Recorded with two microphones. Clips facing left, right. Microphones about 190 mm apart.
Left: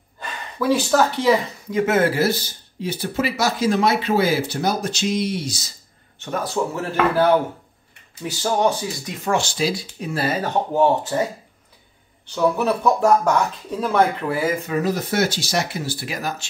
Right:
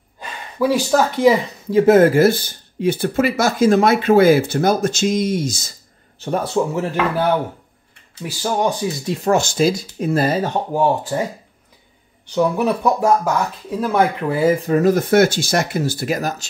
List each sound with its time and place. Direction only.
0.2 s speech: 10° right (ahead or behind)
1.7 s speech: 40° right (ahead or behind)
6.1 s speech: 30° right (ahead or behind)
8.4 s speech: 10° right (ahead or behind)
9.0 s speech: 40° right (ahead or behind)
10.4 s speech: 10° right (ahead or behind)
12.4 s speech: 15° right (ahead or behind)
14.7 s speech: 50° right (ahead or behind)